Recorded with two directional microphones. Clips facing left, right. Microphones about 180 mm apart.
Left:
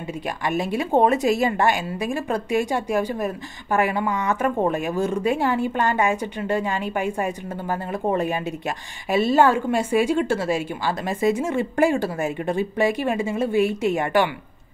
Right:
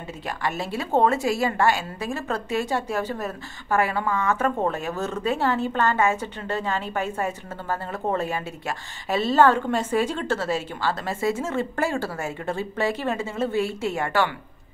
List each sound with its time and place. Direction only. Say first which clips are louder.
0.5 s a woman's voice: left 4 dB; 15° left (ahead or behind)